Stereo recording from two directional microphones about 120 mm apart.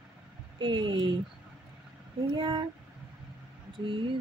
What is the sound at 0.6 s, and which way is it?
Speech, 40° right (ahead or behind).